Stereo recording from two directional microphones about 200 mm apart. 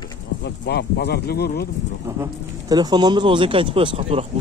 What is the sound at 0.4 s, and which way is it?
Speech, 55° left (ahead or behind).